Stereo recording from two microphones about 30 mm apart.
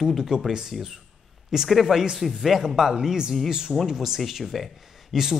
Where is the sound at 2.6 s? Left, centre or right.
Centre.